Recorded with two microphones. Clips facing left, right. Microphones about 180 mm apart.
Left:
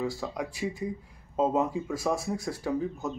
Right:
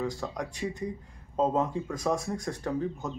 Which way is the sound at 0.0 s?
10° left (ahead or behind).